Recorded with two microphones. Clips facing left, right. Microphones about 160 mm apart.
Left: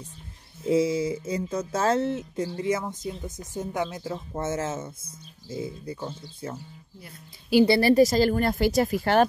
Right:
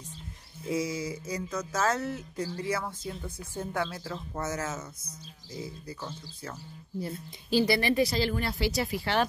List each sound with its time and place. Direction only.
0.7 s speech: 25° left (ahead or behind)
7.6 s speech: 35° left (ahead or behind)